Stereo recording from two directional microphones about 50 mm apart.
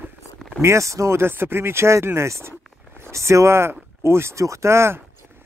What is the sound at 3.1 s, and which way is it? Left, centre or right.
Speech, right.